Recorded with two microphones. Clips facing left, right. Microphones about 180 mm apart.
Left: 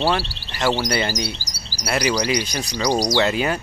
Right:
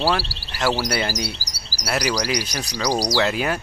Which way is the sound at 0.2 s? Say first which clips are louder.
Left 1 dB; 35° right (ahead or behind).